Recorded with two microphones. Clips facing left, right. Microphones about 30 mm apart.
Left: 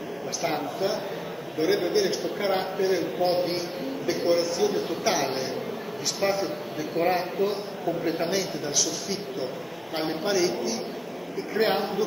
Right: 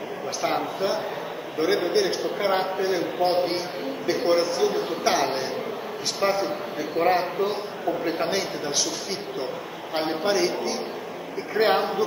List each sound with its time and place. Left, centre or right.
0.4 s a man's voice: centre
9.9 s a man's voice: centre